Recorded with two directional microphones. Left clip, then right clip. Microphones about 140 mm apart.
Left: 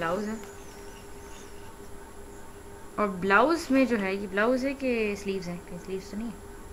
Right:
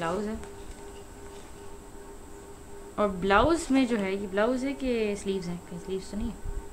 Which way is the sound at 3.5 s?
60° right (ahead or behind).